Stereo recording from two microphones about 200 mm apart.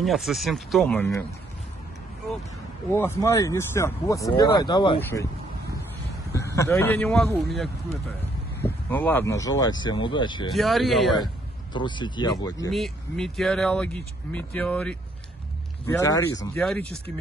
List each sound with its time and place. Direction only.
0.0 s speech: centre (ahead or behind)
2.9 s speech: 10° left (ahead or behind)
6.3 s a man's voice: 15° left (ahead or behind)
10.5 s speech: centre (ahead or behind)
11.7 s speech: 25° left (ahead or behind)
12.7 s speech: centre (ahead or behind); by 16.4 s 15° left (ahead or behind)
16.5 s speech: centre (ahead or behind)